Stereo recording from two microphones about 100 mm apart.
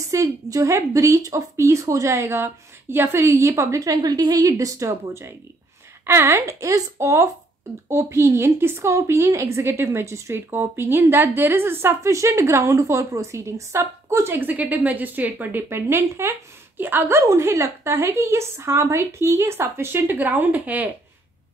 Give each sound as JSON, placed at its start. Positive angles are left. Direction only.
{"t": 0.1, "sound": "a woman's voice", "side_deg": -35}